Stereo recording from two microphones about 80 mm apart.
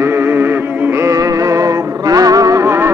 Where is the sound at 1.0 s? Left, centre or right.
Right.